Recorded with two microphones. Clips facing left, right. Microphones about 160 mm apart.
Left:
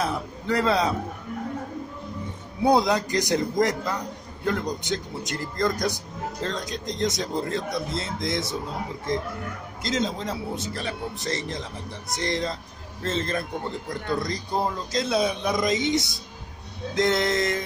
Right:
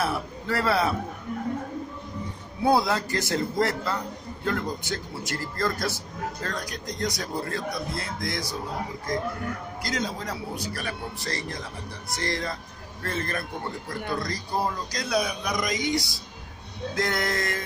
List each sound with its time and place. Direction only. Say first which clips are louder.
0.0 s a man's voice: left 1 dB; 20° left (ahead or behind)
2.6 s a man's voice: left 2 dB; 20° left (ahead or behind)